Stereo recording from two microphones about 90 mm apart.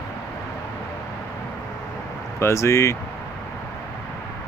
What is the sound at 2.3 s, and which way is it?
Speech, 30° left (ahead or behind).